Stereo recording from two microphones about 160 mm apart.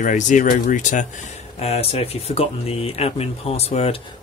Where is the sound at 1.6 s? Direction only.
40° left (ahead or behind).